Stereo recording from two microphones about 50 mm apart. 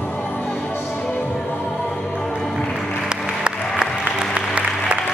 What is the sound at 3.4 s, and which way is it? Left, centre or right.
Applause, right.